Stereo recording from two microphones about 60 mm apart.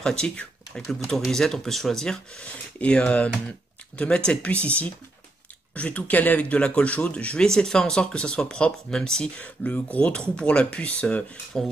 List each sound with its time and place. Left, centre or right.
0.0 s speech: centre
9.4 s speech: left